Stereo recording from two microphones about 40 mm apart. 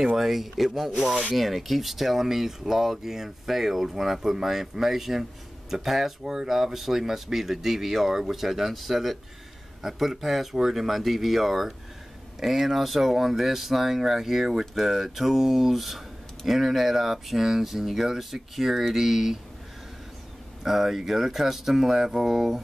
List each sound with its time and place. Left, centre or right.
0.0 s speech: centre
1.0 s rub: right
1.3 s speech: centre
20.6 s speech: centre